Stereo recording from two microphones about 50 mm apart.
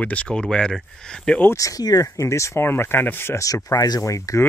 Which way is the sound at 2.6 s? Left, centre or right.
Left.